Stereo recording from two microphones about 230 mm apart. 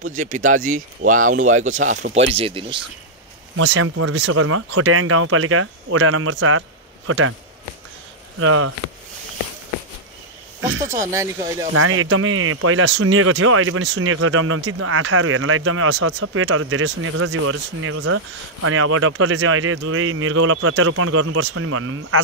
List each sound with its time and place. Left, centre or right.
0.1 s speech: right
3.5 s speech: right
4.3 s speech: right
8.4 s speech: right
11.1 s speech: centre
11.7 s speech: right